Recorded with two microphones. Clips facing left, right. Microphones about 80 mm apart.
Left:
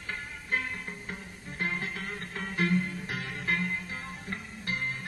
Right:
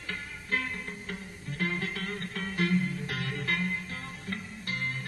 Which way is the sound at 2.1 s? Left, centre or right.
Left.